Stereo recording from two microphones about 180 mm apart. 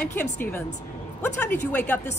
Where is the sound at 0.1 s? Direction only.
10° left (ahead or behind).